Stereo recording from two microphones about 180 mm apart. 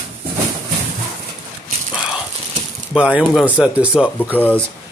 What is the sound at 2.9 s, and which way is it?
Speech, 5° right (ahead or behind).